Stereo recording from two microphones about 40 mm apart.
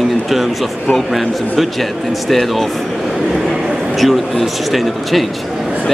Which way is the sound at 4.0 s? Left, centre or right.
Centre.